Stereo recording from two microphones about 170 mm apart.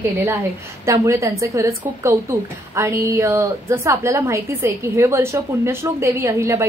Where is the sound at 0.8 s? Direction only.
15° right (ahead or behind).